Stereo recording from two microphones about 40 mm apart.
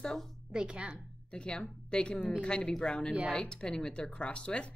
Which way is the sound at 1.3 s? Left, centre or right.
Left.